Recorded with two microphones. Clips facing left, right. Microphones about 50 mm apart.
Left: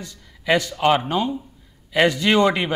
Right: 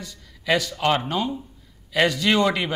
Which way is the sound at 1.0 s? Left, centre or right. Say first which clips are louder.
Left 3 dB; left.